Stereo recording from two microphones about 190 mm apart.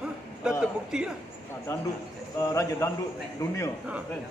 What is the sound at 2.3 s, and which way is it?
Speech, 15° left (ahead or behind).